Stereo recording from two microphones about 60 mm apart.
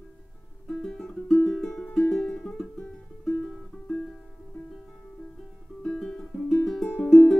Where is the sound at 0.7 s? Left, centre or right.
Centre.